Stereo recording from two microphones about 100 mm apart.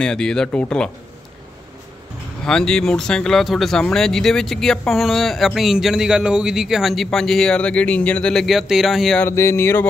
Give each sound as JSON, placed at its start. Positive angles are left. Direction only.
{"t": 0.0, "sound": "speech", "side_deg": 5}
{"t": 2.4, "sound": "speech", "side_deg": 10}
{"t": 9.2, "sound": "speech", "side_deg": 25}